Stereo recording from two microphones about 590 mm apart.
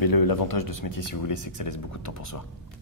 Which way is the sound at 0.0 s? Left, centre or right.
Left.